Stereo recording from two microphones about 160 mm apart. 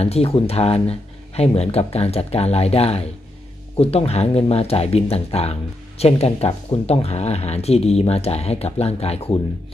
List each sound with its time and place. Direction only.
0.0 s speech: 40° left (ahead or behind)